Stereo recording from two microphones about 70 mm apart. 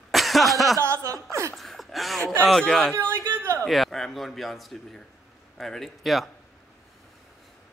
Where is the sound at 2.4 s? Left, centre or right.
Centre.